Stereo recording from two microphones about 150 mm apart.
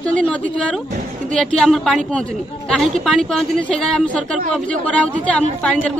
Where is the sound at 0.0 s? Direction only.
5° left (ahead or behind).